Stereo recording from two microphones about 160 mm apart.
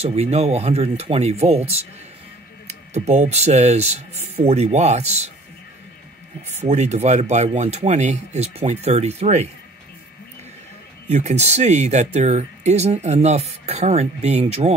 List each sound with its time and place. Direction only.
0.0 s speech: 40° right (ahead or behind)
2.9 s speech: 45° right (ahead or behind)
6.5 s speech: 45° right (ahead or behind)
11.1 s speech: 45° right (ahead or behind)